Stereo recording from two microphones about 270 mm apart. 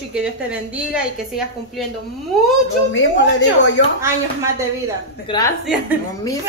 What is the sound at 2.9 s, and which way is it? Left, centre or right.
Speech, left.